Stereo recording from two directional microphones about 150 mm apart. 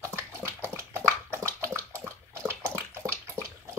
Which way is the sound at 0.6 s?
20° right (ahead or behind).